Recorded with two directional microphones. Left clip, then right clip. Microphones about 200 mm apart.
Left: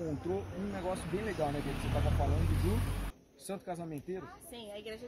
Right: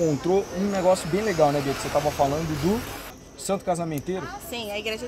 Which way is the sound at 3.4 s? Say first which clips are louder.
Right 15 dB; centre (ahead or behind).